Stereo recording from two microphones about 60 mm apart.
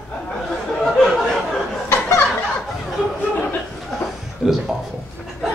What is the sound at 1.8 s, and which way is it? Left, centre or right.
Chuckle, left.